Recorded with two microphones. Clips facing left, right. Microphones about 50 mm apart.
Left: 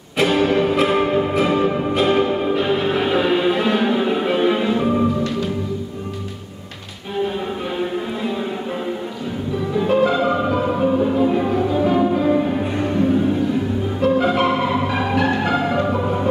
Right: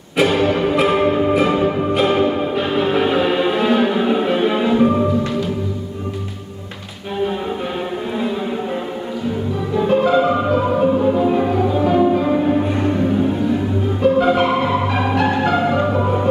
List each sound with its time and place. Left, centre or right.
0.2 s music: centre
9.8 s music: centre
14.0 s music: centre